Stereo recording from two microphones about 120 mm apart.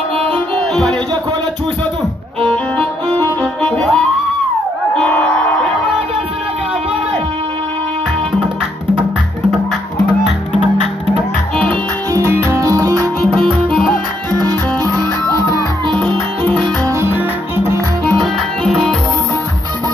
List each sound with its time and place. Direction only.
3.6 s music: 10° left (ahead or behind)
12.1 s music: 20° right (ahead or behind)
15.9 s music: 45° right (ahead or behind)
16.8 s music: 20° right (ahead or behind)
18.1 s music: centre (ahead or behind)